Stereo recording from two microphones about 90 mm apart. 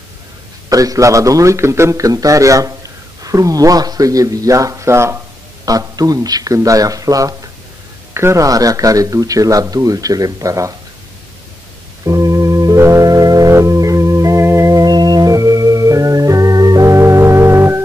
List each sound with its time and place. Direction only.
0.7 s a man's voice: 40° right (ahead or behind)
5.7 s a man's voice: 40° right (ahead or behind)
12.0 s organ: 40° right (ahead or behind)